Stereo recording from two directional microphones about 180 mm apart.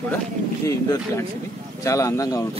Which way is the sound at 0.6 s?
15° left (ahead or behind).